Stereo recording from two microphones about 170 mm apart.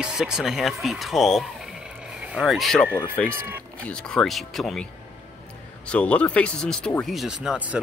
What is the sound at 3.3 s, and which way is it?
Speech, 15° right (ahead or behind).